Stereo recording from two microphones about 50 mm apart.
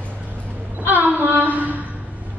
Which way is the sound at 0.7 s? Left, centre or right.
Right.